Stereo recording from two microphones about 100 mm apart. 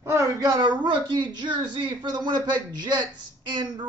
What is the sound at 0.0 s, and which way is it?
Speech, 30° right (ahead or behind).